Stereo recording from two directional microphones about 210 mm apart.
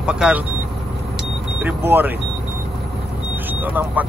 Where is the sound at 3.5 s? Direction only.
10° right (ahead or behind).